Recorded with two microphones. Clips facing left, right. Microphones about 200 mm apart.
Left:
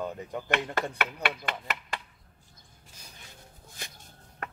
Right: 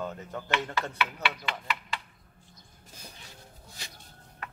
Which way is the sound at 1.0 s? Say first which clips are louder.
Even; 50° left (ahead or behind).